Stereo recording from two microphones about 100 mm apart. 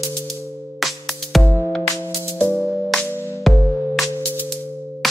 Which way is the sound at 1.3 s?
Centre (ahead or behind).